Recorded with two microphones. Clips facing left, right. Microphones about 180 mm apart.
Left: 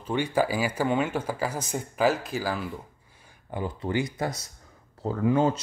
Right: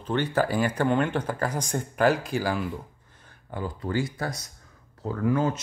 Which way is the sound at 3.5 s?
20° left (ahead or behind).